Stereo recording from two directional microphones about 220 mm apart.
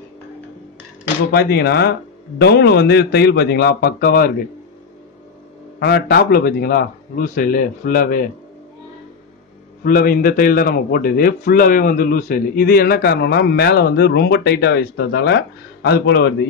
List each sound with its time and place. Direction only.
1.3 s a man's voice: 45° left (ahead or behind)
5.8 s a man's voice: 45° left (ahead or behind)
9.8 s a man's voice: 40° left (ahead or behind)